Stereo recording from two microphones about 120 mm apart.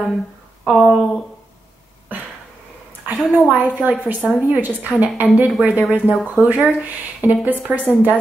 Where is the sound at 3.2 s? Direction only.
Centre (ahead or behind).